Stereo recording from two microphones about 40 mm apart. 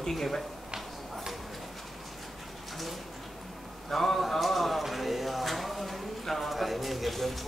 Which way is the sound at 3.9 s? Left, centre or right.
Centre.